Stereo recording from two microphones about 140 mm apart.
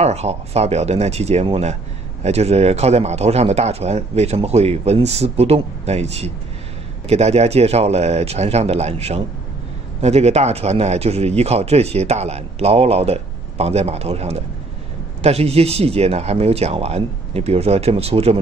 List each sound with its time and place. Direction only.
0.0 s speech: 50° right (ahead or behind)